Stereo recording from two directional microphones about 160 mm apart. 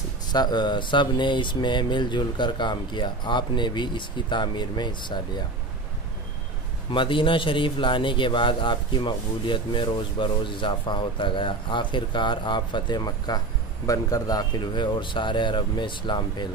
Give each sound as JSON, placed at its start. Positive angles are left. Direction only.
{"t": 0.3, "sound": "speech", "side_deg": 25}
{"t": 6.9, "sound": "a man's voice", "side_deg": 30}